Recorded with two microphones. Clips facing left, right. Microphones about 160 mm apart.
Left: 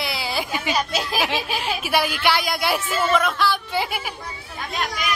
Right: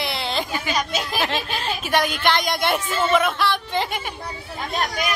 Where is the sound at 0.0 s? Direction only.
5° left (ahead or behind).